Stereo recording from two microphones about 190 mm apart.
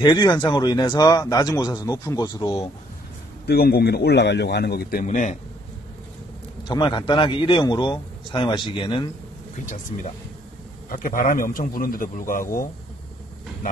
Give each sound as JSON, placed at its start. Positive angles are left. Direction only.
{"t": 0.0, "sound": "a man's voice", "side_deg": 20}
{"t": 3.4, "sound": "a man's voice", "side_deg": 55}
{"t": 5.0, "sound": "speech", "side_deg": 40}
{"t": 6.7, "sound": "a man's voice", "side_deg": 25}
{"t": 10.9, "sound": "a man's voice", "side_deg": 45}